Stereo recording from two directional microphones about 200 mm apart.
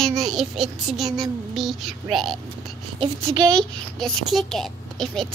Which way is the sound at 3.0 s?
20° right (ahead or behind).